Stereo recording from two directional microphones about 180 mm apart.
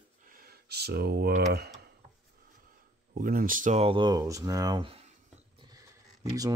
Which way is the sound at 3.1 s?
50° right (ahead or behind).